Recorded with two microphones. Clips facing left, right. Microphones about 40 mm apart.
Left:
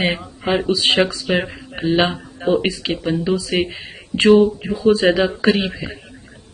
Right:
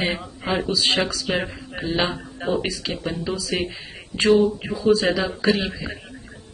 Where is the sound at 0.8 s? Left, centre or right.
Left.